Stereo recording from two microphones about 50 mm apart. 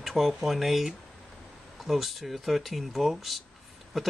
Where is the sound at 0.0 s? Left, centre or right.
Centre.